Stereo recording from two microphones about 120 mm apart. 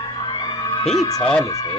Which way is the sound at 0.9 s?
30° left (ahead or behind).